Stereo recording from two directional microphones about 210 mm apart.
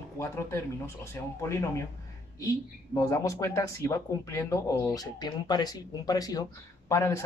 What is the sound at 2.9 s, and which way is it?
Speech, 15° left (ahead or behind).